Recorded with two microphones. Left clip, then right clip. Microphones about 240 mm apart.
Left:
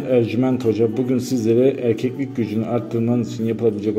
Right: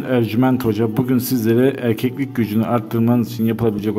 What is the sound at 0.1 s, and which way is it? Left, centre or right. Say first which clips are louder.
A man's voice: even; right.